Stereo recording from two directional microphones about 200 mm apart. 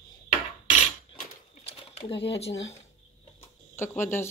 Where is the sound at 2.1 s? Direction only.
60° left (ahead or behind).